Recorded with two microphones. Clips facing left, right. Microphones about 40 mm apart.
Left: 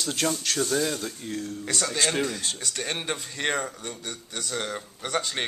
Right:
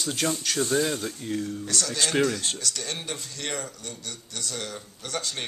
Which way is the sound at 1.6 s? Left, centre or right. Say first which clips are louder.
Left 4 dB; left.